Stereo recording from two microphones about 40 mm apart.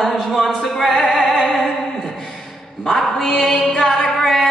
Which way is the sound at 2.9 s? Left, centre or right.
Centre.